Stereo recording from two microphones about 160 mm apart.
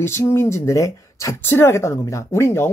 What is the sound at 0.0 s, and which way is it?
Speech, 15° left (ahead or behind).